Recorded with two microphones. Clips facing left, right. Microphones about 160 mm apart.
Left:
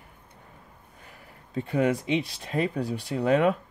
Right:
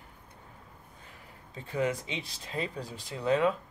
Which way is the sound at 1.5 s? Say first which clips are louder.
Left 6 dB; 65° left (ahead or behind).